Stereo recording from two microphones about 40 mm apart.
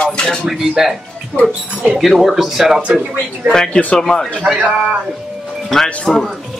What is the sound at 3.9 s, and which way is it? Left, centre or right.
Speech, centre.